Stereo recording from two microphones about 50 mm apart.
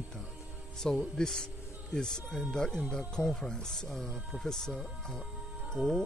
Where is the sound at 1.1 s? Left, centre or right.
Centre.